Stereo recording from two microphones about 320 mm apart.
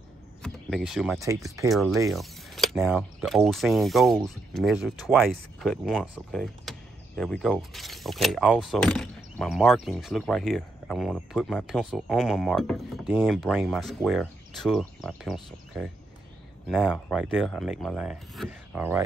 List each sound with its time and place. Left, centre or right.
0.4 s speech: centre